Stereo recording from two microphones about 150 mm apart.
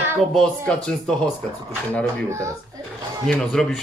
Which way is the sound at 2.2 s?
20° right (ahead or behind).